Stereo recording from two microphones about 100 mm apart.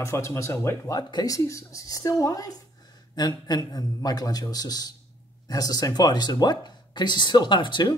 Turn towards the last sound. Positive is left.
turn(degrees=50)  # may be behind; listen again after turning